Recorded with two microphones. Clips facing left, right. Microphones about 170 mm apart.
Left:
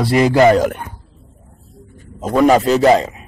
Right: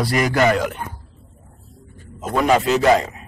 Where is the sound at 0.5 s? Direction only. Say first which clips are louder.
Left 7 dB; 45° left (ahead or behind).